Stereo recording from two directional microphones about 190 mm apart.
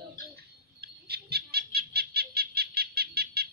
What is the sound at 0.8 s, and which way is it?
Owl, 55° right (ahead or behind).